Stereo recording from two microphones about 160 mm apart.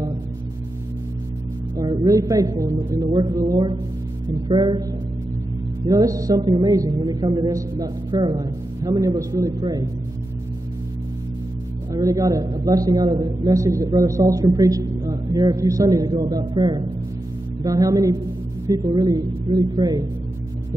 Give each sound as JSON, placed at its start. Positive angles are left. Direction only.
{"t": 1.8, "sound": "a man's voice", "side_deg": -20}
{"t": 5.9, "sound": "a man's voice", "side_deg": -20}
{"t": 11.9, "sound": "a man's voice", "side_deg": -20}